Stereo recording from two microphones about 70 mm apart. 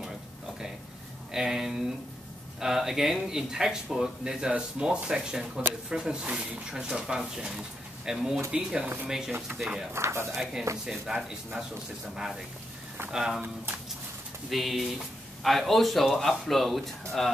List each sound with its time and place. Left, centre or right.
1.3 s speech: centre
9.5 s speech: right
9.9 s speech: right
10.3 s speech: centre
14.5 s speech: centre